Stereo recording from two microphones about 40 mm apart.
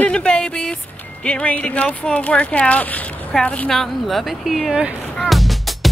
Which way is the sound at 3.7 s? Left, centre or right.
Centre.